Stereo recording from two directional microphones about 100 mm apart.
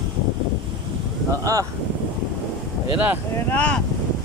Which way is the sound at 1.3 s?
35° right (ahead or behind).